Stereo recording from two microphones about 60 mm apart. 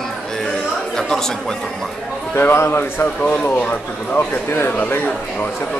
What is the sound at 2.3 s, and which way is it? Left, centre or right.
Speech, left.